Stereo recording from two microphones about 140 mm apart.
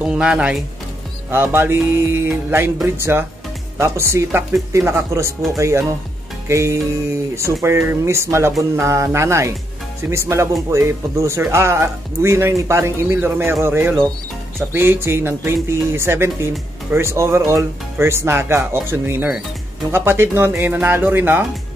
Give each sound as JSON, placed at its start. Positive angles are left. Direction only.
{"t": 0.0, "sound": "speech", "side_deg": -5}
{"t": 1.3, "sound": "speech", "side_deg": -15}
{"t": 6.4, "sound": "music", "side_deg": -20}
{"t": 7.6, "sound": "speech", "side_deg": -20}